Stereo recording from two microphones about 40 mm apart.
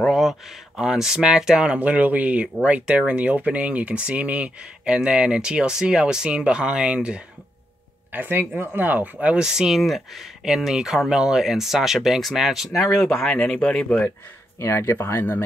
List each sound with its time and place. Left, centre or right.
0.1 s speech: centre
1.8 s speech: right
8.1 s speech: right
9.4 s speech: centre
9.7 s speech: centre
13.0 s a man's voice: centre